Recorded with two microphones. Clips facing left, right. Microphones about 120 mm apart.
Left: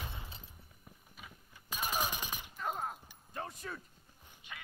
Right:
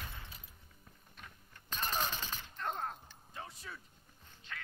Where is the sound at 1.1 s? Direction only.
5° left (ahead or behind).